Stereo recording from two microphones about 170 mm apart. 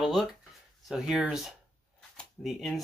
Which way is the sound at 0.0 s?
Centre (ahead or behind).